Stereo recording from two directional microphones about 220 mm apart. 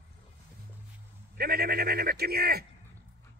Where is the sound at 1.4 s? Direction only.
45° right (ahead or behind).